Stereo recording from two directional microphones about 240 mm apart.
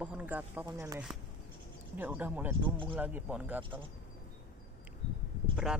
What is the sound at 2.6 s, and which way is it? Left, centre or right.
Speech, right.